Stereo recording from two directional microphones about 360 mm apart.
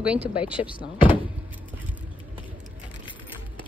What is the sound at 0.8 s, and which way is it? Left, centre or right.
Door, centre.